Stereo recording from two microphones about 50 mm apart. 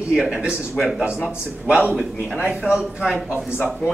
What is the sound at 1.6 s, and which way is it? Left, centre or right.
Speech, right.